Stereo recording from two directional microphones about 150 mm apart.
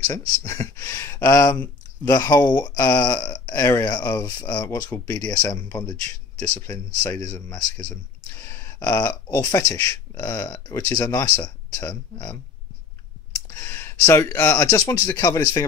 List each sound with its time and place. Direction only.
0.0 s speech: 15° left (ahead or behind)
3.5 s speech: 15° left (ahead or behind)
4.2 s speech: 25° left (ahead or behind); by 5.3 s 10° left (ahead or behind)
5.3 s speech: 25° left (ahead or behind)
7.3 s speech: 15° left (ahead or behind)
7.9 s a sound: 15° left (ahead or behind)
9.3 s speech: 25° left (ahead or behind)